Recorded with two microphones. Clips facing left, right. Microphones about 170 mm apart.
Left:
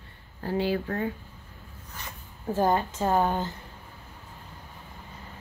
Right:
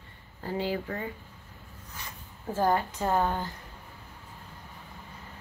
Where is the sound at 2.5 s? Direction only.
20° left (ahead or behind).